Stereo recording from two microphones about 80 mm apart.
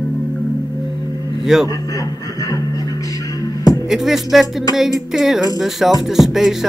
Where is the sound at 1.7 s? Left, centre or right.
Left.